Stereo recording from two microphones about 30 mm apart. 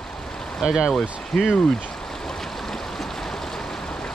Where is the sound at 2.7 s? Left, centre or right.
Centre.